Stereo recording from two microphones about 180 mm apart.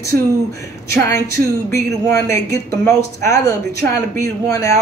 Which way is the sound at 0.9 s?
15° left (ahead or behind).